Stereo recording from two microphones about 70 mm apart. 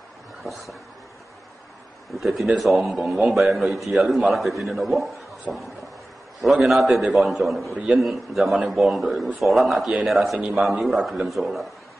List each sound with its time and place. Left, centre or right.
0.4 s a sound: centre
2.1 s speech: centre
5.5 s speech: centre
6.4 s speech: centre
7.7 s a man's voice: centre